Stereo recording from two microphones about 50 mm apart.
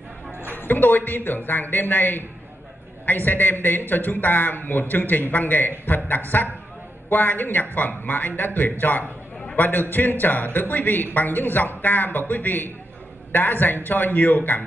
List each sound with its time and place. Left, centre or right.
0.6 s a man's voice: left